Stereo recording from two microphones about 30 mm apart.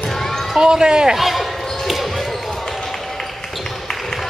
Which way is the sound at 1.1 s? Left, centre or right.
Centre.